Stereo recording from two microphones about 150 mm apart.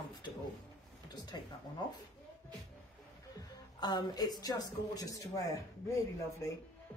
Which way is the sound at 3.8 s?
30° left (ahead or behind).